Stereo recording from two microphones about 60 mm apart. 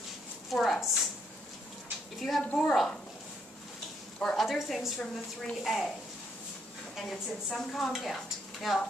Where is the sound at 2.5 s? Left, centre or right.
Centre.